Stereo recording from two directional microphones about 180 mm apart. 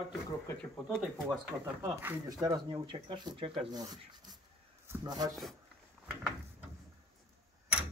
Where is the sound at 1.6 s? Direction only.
15° right (ahead or behind).